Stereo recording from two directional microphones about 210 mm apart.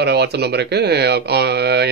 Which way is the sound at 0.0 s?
50° right (ahead or behind).